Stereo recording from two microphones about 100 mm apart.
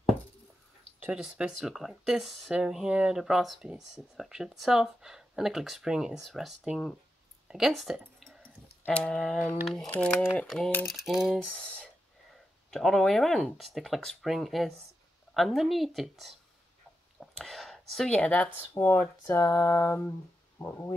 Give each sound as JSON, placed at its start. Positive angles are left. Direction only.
{"t": 1.1, "sound": "speech", "side_deg": -5}
{"t": 8.3, "sound": "a sound", "side_deg": 10}
{"t": 9.8, "sound": "speech", "side_deg": 15}
{"t": 10.4, "sound": "speech", "side_deg": 5}
{"t": 11.3, "sound": "speech", "side_deg": 10}
{"t": 17.2, "sound": "whispering", "side_deg": 5}
{"t": 18.1, "sound": "speech", "side_deg": 15}
{"t": 18.8, "sound": "a sound", "side_deg": 25}